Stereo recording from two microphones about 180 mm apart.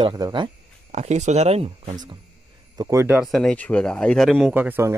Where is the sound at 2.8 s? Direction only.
15° right (ahead or behind).